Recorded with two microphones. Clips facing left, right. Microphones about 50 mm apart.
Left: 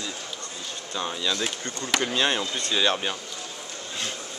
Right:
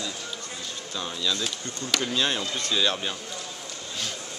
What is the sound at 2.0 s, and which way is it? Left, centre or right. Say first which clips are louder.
Speech: left 2 dB; left.